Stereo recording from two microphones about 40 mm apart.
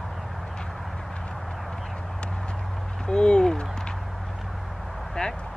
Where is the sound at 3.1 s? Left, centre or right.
Centre.